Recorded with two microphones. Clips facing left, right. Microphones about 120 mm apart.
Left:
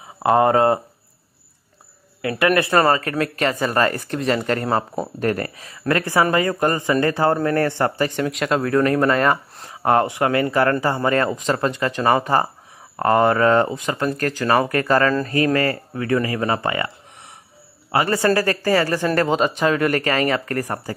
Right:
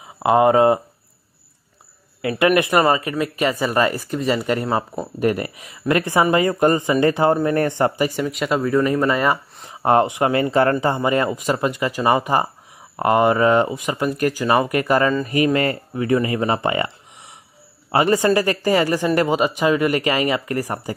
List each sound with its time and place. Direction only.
0.2 s a man's voice: 15° right (ahead or behind)
2.2 s a man's voice: 20° right (ahead or behind)
8.3 s speech: 5° right (ahead or behind)
9.7 s a man's voice: 25° right (ahead or behind)
17.9 s a man's voice: 20° right (ahead or behind)